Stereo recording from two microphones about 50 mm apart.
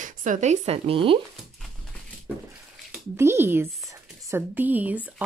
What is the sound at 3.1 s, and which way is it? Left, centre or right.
Speech, right.